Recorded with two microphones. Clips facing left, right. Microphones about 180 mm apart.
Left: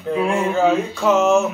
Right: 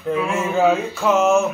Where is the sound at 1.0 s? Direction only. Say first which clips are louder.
Left 1 dB; centre (ahead or behind).